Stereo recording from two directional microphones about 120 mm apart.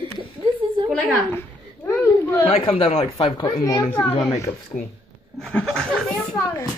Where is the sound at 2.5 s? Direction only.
50° left (ahead or behind).